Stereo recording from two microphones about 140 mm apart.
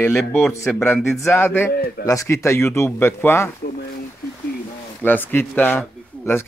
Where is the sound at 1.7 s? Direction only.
90° left.